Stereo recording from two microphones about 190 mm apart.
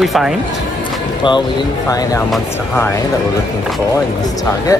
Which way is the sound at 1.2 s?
25° left (ahead or behind).